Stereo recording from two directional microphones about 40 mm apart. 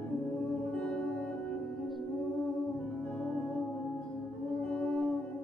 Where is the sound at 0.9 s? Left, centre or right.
Left.